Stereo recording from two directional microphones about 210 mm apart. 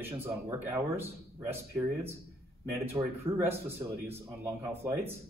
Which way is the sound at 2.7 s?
10° right (ahead or behind).